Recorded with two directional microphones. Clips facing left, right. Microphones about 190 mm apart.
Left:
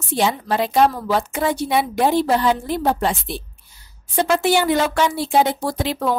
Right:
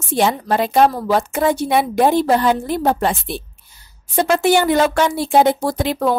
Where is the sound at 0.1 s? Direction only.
50° right (ahead or behind).